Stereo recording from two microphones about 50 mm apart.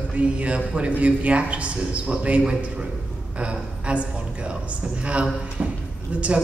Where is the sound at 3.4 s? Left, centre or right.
Right.